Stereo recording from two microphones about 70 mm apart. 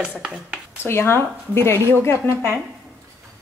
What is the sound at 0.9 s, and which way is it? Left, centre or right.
Speech, left.